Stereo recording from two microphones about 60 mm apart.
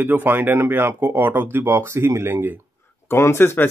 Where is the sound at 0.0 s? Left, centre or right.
Right.